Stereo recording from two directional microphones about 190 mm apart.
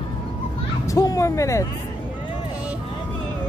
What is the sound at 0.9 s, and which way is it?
Speech, 15° left (ahead or behind).